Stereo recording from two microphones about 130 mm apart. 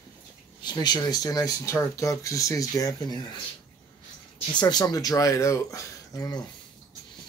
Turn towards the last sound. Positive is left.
turn(degrees=30)  # may be behind; listen again after turning